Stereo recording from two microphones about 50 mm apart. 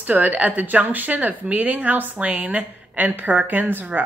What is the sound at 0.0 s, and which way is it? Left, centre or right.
A woman's voice, right.